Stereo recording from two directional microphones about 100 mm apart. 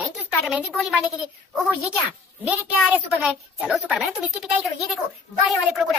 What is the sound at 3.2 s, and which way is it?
Speech, 10° right (ahead or behind).